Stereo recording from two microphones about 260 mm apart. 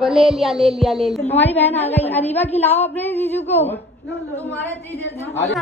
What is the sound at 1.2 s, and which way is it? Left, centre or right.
Speech, left.